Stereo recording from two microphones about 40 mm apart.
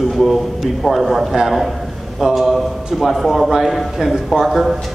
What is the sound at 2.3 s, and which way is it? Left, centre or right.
A man's voice, centre.